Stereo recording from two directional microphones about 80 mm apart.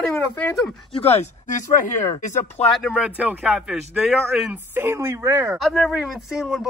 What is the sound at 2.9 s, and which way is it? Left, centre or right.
Speech, centre.